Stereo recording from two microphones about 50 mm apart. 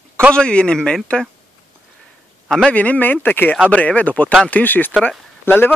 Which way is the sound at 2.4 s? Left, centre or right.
Centre.